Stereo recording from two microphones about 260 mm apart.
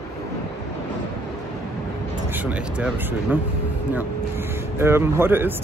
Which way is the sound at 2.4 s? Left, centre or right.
Centre.